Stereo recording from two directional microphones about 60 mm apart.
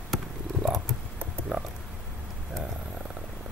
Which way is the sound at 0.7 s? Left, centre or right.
Centre.